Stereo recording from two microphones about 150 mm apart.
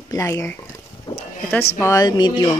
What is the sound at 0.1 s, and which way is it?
Speech, 20° left (ahead or behind).